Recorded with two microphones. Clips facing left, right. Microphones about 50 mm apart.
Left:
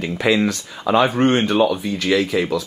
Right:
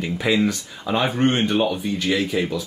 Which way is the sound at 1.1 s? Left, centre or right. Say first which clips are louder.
Left 3 dB; left.